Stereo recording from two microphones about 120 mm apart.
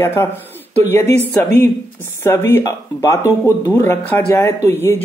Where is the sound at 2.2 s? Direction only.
20° left (ahead or behind).